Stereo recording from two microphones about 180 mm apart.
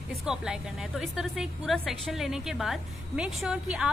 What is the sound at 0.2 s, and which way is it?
A woman's voice, centre (ahead or behind).